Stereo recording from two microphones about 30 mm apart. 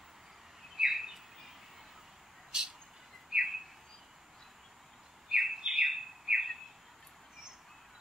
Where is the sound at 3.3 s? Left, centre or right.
Centre.